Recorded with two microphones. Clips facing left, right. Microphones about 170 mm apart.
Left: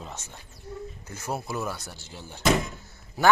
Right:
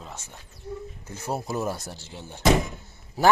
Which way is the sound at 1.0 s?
30° right (ahead or behind).